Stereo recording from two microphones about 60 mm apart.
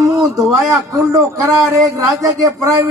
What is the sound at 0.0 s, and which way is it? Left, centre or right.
Speech, right.